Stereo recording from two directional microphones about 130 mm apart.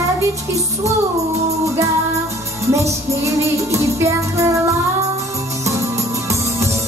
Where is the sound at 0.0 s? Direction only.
25° right (ahead or behind).